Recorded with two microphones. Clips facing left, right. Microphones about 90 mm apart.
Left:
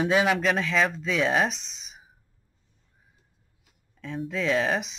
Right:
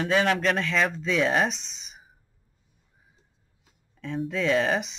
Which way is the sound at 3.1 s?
25° right (ahead or behind).